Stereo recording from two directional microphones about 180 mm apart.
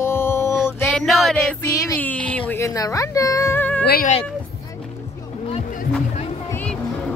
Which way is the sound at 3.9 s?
55° left (ahead or behind).